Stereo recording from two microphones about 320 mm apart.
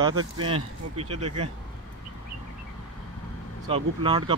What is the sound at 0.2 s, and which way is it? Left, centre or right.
Speech, right.